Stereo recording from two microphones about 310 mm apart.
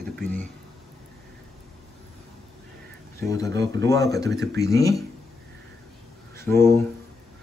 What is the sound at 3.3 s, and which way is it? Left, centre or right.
Speech, centre.